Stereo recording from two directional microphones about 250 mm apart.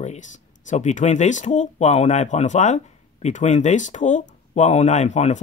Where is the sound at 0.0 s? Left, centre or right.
Left.